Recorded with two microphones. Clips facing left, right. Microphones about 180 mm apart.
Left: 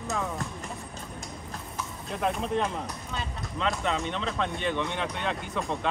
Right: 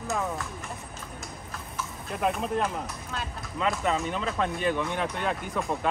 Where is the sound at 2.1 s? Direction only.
5° right (ahead or behind).